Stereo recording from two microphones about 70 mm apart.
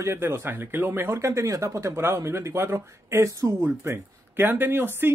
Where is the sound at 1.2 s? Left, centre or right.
Right.